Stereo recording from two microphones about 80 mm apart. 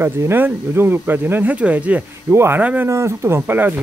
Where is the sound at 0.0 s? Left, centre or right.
Right.